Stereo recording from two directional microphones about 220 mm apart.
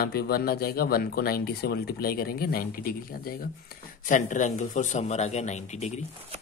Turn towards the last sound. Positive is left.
turn(degrees=30)  # may be behind; listen again after turning